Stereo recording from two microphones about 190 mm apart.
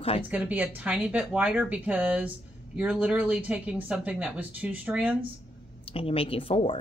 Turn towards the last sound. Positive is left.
turn(degrees=30)  # may be behind; listen again after turning